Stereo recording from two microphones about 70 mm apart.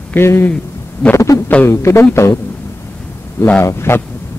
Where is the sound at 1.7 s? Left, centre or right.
Left.